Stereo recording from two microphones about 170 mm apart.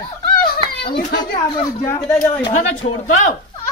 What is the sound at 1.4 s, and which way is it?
Speech, 25° left (ahead or behind).